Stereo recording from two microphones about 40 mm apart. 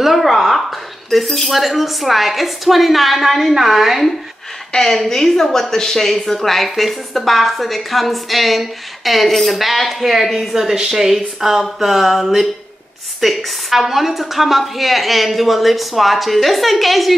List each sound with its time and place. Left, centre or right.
0.0 s a woman's voice: centre
4.7 s a woman's voice: centre